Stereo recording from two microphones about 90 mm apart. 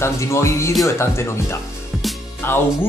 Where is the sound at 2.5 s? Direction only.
25° left (ahead or behind).